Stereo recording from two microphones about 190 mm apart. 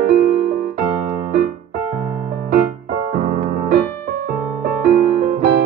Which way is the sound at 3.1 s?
40° right (ahead or behind).